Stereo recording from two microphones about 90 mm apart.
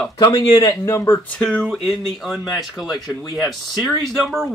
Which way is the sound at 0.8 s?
25° left (ahead or behind).